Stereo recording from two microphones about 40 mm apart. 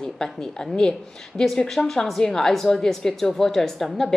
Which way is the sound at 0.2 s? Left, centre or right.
Centre.